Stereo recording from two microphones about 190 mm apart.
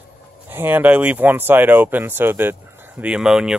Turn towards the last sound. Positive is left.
turn(degrees=-5)  # may be behind; listen again after turning